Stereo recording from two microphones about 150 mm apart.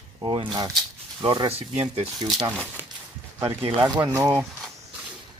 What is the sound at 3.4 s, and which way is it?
Speech, 35° right (ahead or behind).